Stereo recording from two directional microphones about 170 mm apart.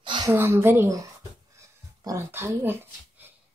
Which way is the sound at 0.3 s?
15° right (ahead or behind).